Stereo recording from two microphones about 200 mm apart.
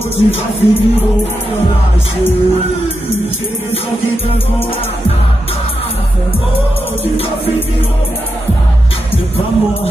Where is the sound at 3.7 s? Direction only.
30° left (ahead or behind).